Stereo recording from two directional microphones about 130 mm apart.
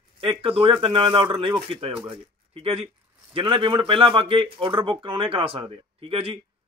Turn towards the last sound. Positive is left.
turn(degrees=-45)  # may be behind; listen again after turning